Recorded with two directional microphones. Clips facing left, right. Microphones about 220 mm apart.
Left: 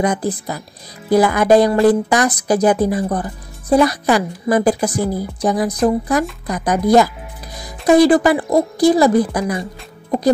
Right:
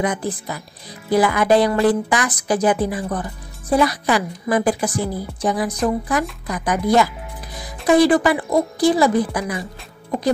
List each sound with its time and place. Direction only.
0.0 s speech: 40° left (ahead or behind)